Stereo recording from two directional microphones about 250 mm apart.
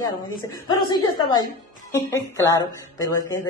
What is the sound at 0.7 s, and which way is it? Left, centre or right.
Speech, centre.